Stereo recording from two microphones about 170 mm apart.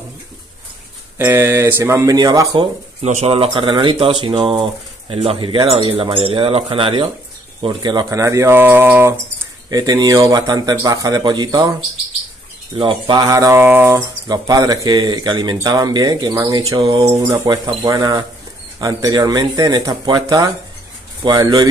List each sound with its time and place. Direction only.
1.1 s speech: 15° right (ahead or behind)
3.0 s speech: 35° right (ahead or behind); by 9.2 s 15° right (ahead or behind)
9.7 s speech: 25° right (ahead or behind)
12.7 s speech: 30° right (ahead or behind)